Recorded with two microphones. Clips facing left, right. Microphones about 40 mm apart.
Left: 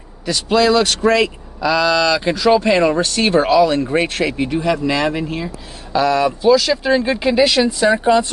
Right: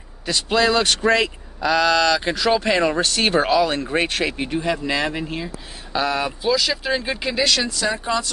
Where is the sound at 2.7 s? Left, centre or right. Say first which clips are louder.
Left 5 dB; left.